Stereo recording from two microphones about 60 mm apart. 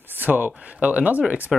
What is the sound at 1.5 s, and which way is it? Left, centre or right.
Speech, centre.